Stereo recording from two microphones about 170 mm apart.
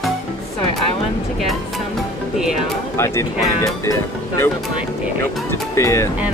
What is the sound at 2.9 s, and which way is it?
Speech, 15° left (ahead or behind).